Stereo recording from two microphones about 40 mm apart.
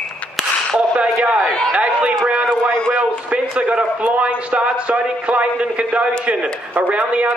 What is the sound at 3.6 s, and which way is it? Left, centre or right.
A man's voice, right.